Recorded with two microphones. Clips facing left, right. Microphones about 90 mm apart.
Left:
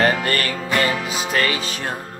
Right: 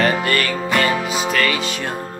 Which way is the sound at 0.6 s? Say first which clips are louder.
Right 1 dB; 35° right (ahead or behind).